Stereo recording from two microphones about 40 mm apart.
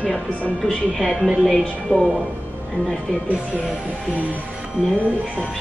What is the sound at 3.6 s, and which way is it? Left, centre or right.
Speech, right.